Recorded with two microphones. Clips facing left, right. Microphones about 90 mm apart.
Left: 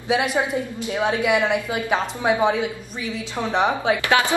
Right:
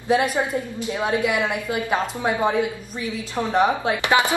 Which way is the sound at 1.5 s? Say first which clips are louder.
Left 1 dB; centre (ahead or behind).